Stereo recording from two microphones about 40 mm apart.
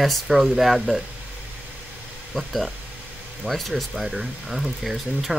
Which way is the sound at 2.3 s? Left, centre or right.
Centre.